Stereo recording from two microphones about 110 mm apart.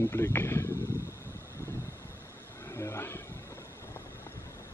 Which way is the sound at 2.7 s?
25° left (ahead or behind).